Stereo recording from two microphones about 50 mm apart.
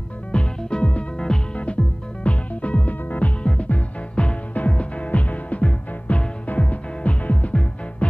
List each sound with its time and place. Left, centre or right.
0.3 s music: centre